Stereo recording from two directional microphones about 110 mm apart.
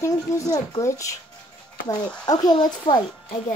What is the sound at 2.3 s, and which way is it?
Speech, 40° left (ahead or behind).